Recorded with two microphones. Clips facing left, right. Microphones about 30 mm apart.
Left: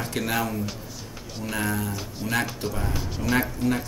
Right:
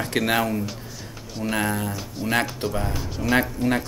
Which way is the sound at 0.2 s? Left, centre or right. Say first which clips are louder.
Right 4 dB; right.